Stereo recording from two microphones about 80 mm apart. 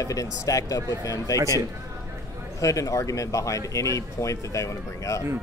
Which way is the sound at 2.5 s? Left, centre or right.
Left.